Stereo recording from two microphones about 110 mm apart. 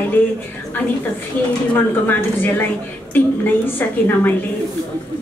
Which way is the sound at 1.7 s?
15° left (ahead or behind).